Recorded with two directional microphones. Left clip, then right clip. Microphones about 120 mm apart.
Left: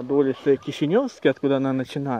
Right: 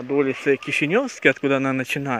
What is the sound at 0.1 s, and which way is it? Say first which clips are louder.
Speech: even; 10° left (ahead or behind).